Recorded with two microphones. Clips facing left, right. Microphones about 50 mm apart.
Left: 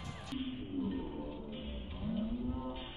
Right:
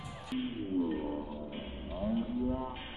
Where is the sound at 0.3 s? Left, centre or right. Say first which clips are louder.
Right 6 dB; centre.